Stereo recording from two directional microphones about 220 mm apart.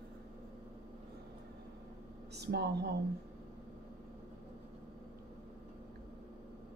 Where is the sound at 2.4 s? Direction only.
50° right (ahead or behind).